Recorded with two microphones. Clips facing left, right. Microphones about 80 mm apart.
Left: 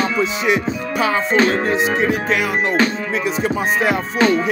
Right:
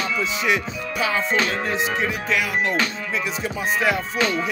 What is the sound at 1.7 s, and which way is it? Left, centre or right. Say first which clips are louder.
Music: left 6 dB; left.